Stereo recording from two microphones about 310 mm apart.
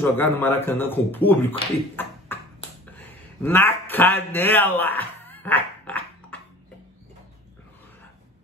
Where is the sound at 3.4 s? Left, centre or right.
Centre.